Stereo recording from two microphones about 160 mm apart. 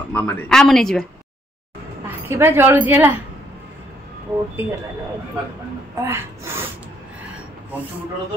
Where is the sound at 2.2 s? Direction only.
15° right (ahead or behind).